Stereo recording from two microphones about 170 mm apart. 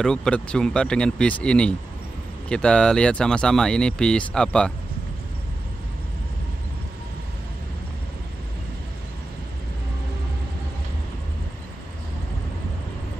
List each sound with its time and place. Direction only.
0.0 s speech: 5° left (ahead or behind)